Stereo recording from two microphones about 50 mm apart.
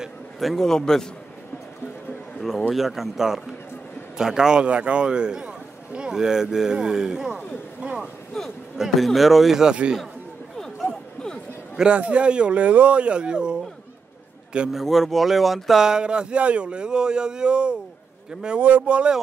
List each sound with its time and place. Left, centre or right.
0.4 s a man's voice: centre
2.7 s speech: centre
4.6 s speech: right
8.3 s a man's voice: centre
8.7 s speech: centre
11.7 s a man's voice: centre
14.7 s speech: centre
15.8 s speech: centre
18.6 s speech: right